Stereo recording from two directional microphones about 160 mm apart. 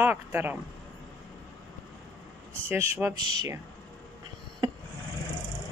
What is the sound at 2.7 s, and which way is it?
Speech, 15° right (ahead or behind).